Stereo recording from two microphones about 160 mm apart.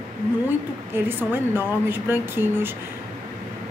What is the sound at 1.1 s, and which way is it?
A woman's voice, 10° right (ahead or behind).